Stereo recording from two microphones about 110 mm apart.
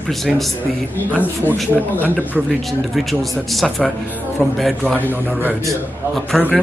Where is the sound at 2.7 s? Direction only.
Centre (ahead or behind).